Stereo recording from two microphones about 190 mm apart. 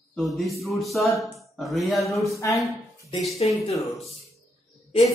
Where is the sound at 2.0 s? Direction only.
15° left (ahead or behind).